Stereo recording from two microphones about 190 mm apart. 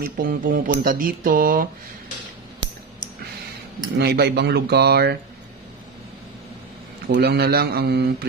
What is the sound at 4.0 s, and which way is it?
A man's voice, 60° right (ahead or behind).